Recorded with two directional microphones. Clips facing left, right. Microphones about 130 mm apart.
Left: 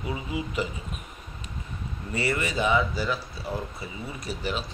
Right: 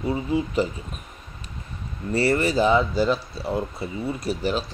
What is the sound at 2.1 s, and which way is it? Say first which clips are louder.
Speech: right 7 dB; 35° right (ahead or behind).